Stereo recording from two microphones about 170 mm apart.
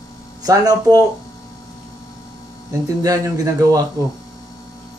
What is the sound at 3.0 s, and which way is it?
Speech, 20° right (ahead or behind).